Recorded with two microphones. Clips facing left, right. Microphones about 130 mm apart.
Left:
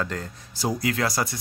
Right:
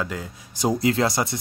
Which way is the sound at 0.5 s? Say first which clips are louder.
Right 5 dB; 25° right (ahead or behind).